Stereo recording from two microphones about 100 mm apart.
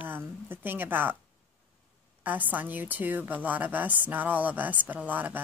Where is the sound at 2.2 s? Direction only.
15° right (ahead or behind).